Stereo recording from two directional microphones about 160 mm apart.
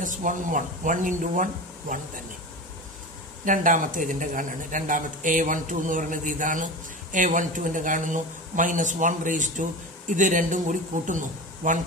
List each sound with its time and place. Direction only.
0.0 s speech: 55° right (ahead or behind)
3.4 s speech: 55° right (ahead or behind)